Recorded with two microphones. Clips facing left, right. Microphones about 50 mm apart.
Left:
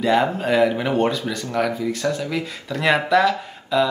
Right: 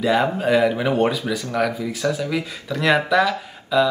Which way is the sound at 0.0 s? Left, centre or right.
Centre.